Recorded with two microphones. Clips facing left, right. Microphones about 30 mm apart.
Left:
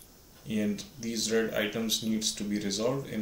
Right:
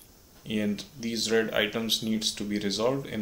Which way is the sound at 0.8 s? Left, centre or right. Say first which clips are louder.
Right 3 dB; right.